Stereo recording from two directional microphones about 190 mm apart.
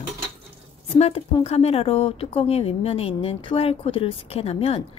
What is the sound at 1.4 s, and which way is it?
Speech, 30° left (ahead or behind).